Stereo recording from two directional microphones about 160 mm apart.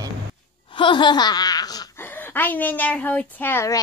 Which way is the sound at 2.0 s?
10° left (ahead or behind).